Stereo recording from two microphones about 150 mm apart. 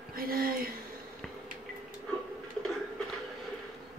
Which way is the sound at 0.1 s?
75° right (ahead or behind).